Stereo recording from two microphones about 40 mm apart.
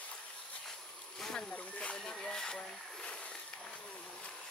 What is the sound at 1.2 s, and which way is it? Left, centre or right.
Speech, centre.